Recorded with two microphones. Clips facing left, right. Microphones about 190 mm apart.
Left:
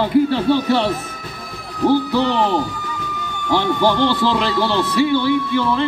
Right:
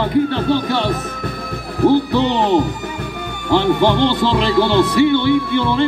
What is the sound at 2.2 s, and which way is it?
Speech, 25° right (ahead or behind).